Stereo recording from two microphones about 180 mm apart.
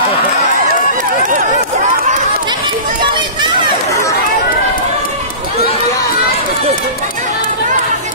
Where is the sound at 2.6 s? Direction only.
25° right (ahead or behind).